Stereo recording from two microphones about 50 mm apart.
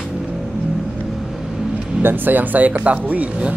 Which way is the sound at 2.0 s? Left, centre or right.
Right.